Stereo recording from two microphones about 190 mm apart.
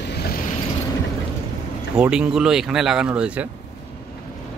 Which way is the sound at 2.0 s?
5° right (ahead or behind).